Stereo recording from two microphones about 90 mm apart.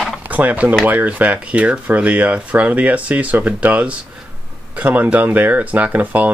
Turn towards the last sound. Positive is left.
turn(degrees=-15)  # may be behind; listen again after turning